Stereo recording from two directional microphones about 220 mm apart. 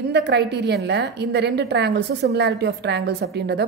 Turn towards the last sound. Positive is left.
turn(degrees=-50)  # may be behind; listen again after turning